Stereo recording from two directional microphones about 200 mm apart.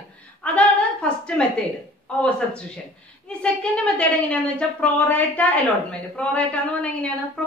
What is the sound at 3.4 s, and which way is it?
A woman's voice, 5° left (ahead or behind).